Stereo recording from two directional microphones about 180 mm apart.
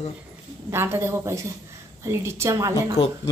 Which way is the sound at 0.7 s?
15° right (ahead or behind).